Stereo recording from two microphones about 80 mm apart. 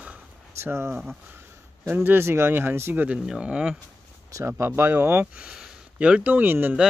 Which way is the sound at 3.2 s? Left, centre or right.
Centre.